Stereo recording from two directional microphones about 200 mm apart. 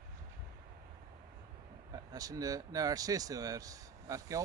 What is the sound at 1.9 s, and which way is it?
Speech, 20° right (ahead or behind).